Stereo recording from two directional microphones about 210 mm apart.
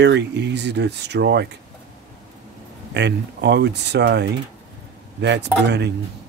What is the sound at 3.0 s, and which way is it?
Speech, 55° right (ahead or behind).